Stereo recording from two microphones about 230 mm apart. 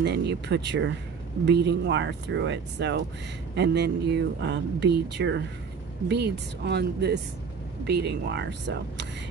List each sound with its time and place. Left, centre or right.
0.0 s speech: right